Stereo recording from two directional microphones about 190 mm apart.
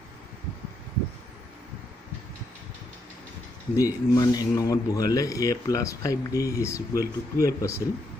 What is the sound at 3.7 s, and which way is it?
Speech, 20° left (ahead or behind).